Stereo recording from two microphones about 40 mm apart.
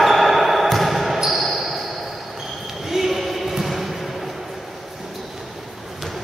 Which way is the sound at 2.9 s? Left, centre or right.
Centre.